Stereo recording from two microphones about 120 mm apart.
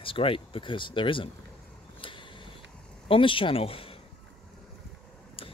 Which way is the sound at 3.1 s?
45° left (ahead or behind).